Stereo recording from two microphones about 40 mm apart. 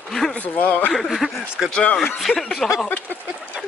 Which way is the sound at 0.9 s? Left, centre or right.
Centre.